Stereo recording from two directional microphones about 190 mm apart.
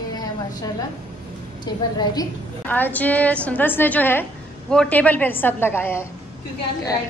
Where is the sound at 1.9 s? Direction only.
20° left (ahead or behind).